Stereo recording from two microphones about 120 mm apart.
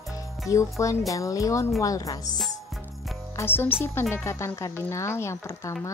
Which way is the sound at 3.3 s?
20° left (ahead or behind).